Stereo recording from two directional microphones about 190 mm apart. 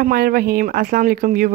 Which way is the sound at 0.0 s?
50° right (ahead or behind).